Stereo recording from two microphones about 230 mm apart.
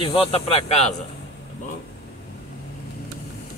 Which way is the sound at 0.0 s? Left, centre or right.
Left.